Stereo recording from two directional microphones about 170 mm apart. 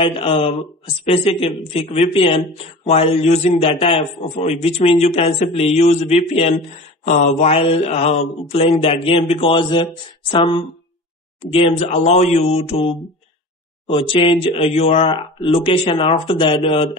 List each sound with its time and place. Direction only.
0.0 s speech: 30° left (ahead or behind)